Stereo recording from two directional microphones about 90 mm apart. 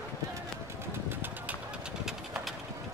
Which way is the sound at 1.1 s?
20° right (ahead or behind).